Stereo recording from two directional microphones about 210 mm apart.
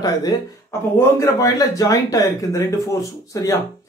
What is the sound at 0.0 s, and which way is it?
Speech, 20° left (ahead or behind).